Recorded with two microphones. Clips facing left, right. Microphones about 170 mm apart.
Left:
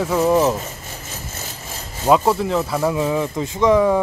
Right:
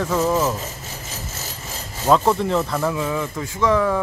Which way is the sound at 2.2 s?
5° left (ahead or behind).